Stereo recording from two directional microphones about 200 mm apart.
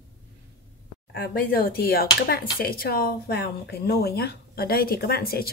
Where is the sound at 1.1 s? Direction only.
50° left (ahead or behind).